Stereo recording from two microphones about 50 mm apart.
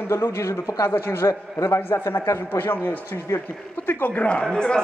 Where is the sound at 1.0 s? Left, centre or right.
Left.